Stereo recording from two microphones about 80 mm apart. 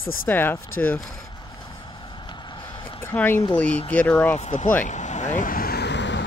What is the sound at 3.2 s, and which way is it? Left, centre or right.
Speech, left.